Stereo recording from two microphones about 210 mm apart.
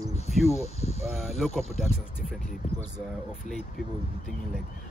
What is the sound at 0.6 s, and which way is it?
Speech, 30° left (ahead or behind).